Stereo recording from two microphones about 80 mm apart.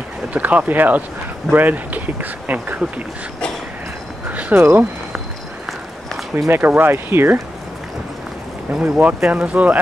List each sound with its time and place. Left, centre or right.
0.3 s speech: centre
4.3 s a sound: centre
4.6 s speech: right
6.3 s speech: right
8.7 s speech: centre